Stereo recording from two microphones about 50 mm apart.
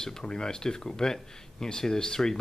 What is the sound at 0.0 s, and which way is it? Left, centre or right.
Speech, centre.